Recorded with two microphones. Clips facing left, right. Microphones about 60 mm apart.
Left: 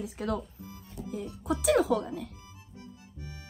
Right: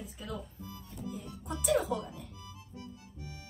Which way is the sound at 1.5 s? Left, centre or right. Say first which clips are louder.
Left 5 dB; left.